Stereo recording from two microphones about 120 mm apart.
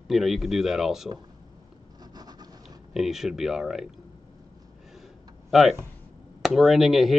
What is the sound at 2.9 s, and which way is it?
Speech, 5° right (ahead or behind).